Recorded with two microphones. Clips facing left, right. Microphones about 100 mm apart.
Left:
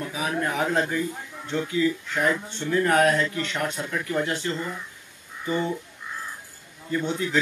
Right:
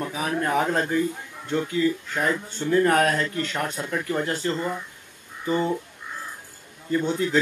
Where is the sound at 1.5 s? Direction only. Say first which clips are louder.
Right 1 dB; 40° right (ahead or behind).